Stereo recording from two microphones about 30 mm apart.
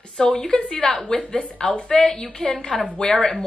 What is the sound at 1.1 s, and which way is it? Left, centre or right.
Speech, centre.